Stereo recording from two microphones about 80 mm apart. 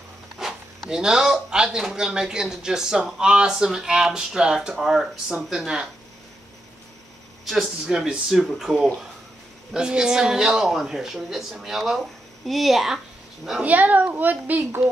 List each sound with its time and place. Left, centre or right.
0.4 s speech: centre
7.4 s speech: centre
13.6 s a child's voice: centre